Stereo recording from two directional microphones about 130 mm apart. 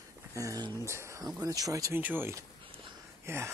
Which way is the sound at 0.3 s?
25° right (ahead or behind).